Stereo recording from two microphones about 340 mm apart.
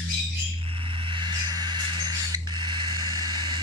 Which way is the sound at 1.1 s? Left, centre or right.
Centre.